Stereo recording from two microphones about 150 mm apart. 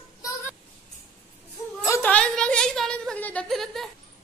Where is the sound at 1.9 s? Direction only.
10° left (ahead or behind).